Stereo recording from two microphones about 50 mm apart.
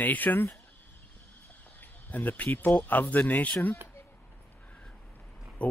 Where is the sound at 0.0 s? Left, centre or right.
Left.